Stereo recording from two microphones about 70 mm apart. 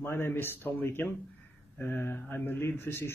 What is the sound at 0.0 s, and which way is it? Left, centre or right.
Speech, left.